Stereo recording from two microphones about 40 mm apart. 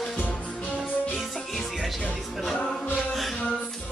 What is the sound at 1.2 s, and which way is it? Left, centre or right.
Music, centre.